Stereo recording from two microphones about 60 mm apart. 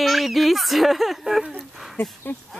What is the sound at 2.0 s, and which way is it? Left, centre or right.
Speech, left.